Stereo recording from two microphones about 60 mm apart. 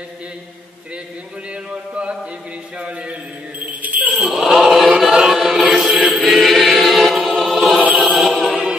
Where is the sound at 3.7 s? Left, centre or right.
Right.